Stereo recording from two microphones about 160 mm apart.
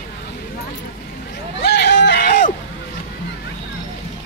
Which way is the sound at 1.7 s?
90° left.